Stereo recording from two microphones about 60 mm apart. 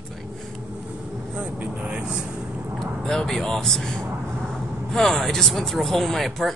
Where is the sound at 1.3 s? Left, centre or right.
Centre.